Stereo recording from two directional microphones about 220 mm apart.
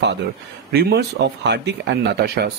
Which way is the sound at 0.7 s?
45° right (ahead or behind).